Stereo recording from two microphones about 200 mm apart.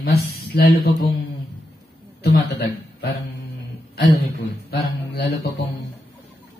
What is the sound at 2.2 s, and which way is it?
Speech, 50° left (ahead or behind).